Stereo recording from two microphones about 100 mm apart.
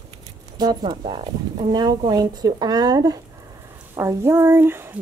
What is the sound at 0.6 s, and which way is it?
Speech, 45° right (ahead or behind).